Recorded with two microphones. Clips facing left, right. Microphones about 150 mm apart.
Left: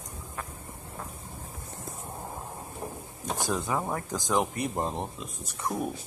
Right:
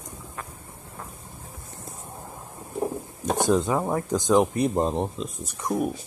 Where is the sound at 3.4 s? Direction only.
20° right (ahead or behind).